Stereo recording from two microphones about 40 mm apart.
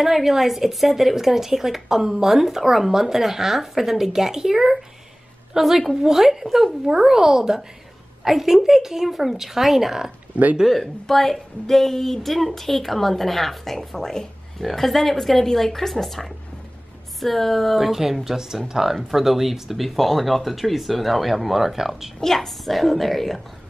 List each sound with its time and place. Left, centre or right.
0.0 s a woman's voice: centre
10.3 s speech: right
10.7 s a woman's voice: centre
22.2 s a woman's voice: centre